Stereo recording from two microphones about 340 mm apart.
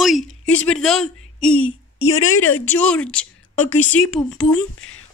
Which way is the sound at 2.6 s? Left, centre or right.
Centre.